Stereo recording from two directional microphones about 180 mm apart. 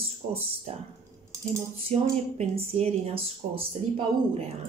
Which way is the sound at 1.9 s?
35° right (ahead or behind).